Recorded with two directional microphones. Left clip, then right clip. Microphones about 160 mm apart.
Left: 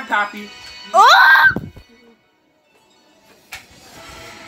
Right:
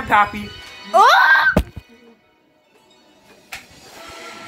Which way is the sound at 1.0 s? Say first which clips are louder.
Left 3 dB; 10° left (ahead or behind).